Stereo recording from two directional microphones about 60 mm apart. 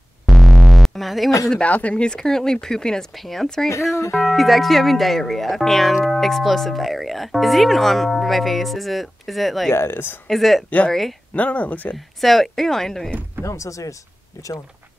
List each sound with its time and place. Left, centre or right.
0.4 s music: centre
1.5 s speech: left
4.2 s speech: centre
9.7 s speech: left
10.2 s speech: centre
11.3 s speech: left
11.9 s speech: centre
13.4 s speech: left